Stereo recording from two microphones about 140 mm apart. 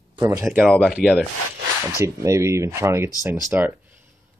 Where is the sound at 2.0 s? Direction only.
20° right (ahead or behind).